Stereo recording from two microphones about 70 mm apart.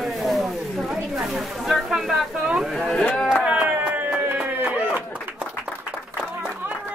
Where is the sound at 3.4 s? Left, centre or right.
Centre.